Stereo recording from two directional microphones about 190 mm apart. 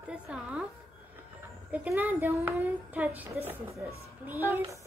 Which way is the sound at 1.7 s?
10° right (ahead or behind).